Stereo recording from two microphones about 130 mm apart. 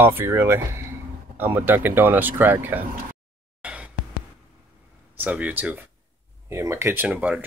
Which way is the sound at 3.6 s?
10° right (ahead or behind).